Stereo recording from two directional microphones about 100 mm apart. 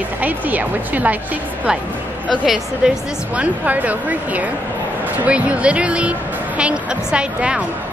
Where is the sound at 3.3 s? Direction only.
15° right (ahead or behind).